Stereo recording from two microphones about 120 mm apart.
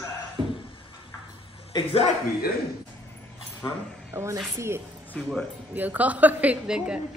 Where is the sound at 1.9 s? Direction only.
60° left (ahead or behind).